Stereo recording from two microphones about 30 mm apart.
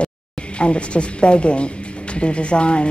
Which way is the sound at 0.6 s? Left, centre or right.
Left.